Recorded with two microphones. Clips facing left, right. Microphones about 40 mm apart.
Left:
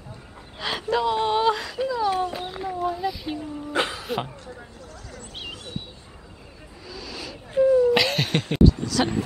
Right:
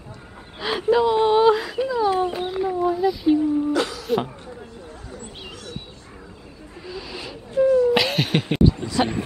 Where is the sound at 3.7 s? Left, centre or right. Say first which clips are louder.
Right 2 dB; left.